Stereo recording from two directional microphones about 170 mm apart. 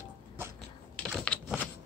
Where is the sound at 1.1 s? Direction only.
Centre (ahead or behind).